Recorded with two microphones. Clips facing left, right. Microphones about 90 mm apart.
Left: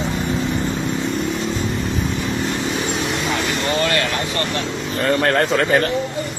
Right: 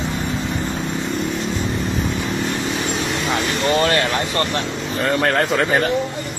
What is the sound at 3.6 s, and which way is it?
Vehicle, 35° right (ahead or behind).